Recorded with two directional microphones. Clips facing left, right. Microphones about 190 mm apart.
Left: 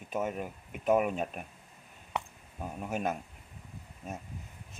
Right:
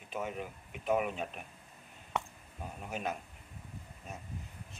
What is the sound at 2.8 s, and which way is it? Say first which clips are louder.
Speech: left 5 dB; 45° left (ahead or behind).